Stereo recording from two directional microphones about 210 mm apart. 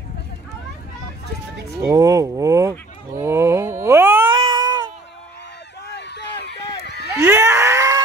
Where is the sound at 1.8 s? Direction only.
15° right (ahead or behind).